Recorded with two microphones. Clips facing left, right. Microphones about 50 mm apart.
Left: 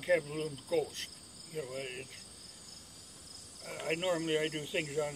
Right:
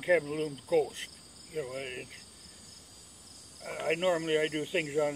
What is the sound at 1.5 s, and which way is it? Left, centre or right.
Speech, centre.